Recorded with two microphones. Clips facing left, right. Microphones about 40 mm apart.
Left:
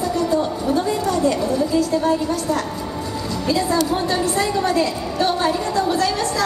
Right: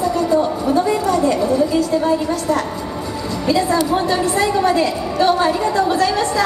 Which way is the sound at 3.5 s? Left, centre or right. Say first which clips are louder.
Right 4 dB; right.